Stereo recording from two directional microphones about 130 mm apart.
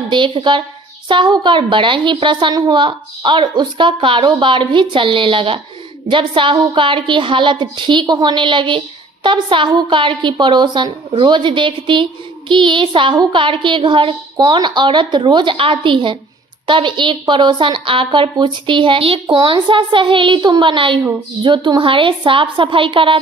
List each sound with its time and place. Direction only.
0.1 s a woman's voice: 40° right (ahead or behind)